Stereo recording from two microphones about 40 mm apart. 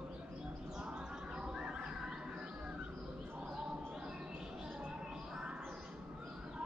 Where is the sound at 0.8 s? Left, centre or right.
Right.